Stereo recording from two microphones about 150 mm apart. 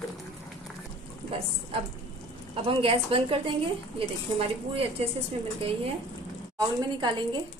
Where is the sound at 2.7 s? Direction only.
35° right (ahead or behind).